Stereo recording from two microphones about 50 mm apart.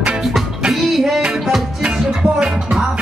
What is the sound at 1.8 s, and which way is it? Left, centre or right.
Music, centre.